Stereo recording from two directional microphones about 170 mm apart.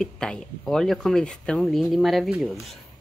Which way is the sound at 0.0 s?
5° left (ahead or behind).